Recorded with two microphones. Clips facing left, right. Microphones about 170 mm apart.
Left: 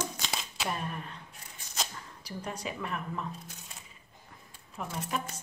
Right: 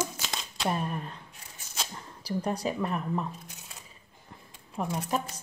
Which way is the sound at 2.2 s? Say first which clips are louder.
Right 8 dB; 35° right (ahead or behind).